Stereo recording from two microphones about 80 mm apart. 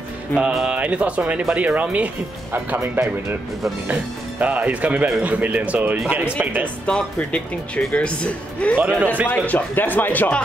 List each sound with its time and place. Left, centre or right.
0.3 s speech: left
0.7 s speech: centre
2.8 s speech: right
3.9 s speech: centre
6.9 s speech: centre
9.0 s speech: right
9.3 s speech: left